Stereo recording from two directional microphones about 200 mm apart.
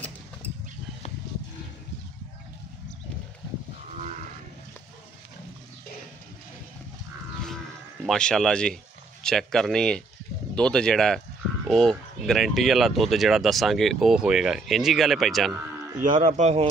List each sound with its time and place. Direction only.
8.1 s speech: 5° left (ahead or behind)
16.3 s speech: 35° right (ahead or behind)